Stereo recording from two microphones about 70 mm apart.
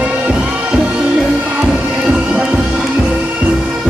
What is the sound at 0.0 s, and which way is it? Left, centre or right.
Music, centre.